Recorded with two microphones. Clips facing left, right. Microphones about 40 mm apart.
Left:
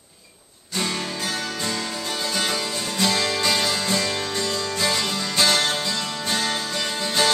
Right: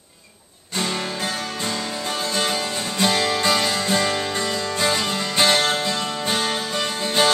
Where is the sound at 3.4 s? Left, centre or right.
Centre.